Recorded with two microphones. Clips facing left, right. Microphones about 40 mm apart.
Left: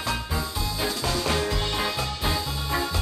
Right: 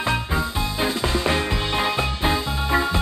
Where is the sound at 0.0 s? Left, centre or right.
Right.